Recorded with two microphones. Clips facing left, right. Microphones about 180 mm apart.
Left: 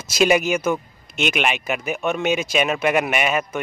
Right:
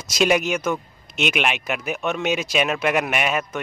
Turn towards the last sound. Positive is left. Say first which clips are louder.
# left 2 dB
turn(degrees=0)  # may be behind; listen again after turning